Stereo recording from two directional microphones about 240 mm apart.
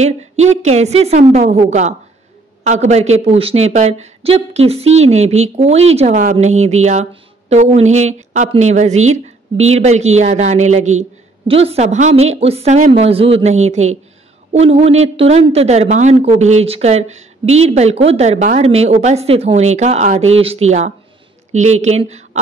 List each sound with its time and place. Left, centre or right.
0.0 s a woman's voice: right